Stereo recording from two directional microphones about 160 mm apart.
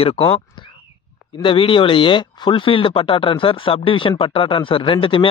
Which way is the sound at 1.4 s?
35° left (ahead or behind).